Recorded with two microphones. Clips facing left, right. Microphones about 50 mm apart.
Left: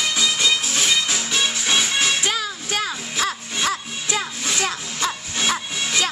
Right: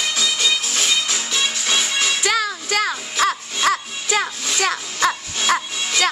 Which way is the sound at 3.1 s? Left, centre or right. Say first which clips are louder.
Right 4 dB; right.